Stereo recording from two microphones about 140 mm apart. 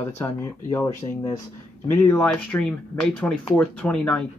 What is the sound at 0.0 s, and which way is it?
Speech, 15° left (ahead or behind).